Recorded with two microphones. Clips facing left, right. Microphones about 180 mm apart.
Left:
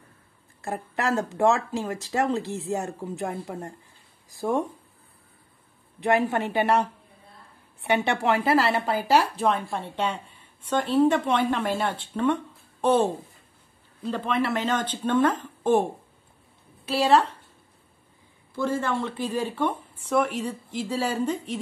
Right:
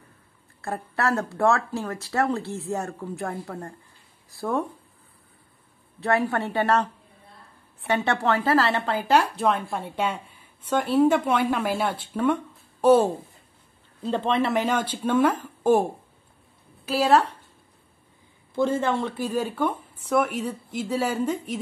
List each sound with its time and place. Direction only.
0.6 s speech: 15° left (ahead or behind)
5.9 s speech: 15° left (ahead or behind); by 13.1 s 10° right (ahead or behind)
14.0 s speech: 25° right (ahead or behind); by 15.8 s 10° right (ahead or behind)
16.8 s a woman's voice: 5° right (ahead or behind)
18.5 s a woman's voice: 20° right (ahead or behind); by 21.5 s 5° right (ahead or behind)